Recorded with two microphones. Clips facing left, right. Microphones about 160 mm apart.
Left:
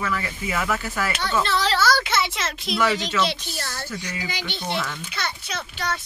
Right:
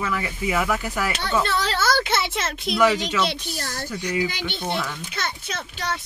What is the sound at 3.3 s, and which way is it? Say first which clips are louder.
Speech: right 1 dB; 40° right (ahead or behind).